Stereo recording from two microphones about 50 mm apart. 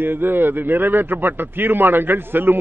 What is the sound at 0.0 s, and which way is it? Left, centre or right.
A man's voice, right.